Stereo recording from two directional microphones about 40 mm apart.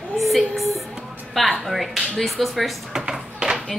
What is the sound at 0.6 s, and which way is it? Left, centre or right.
Speech, centre.